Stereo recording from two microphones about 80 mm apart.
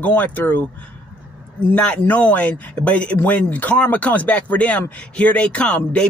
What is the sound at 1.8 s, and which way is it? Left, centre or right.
Speech, centre.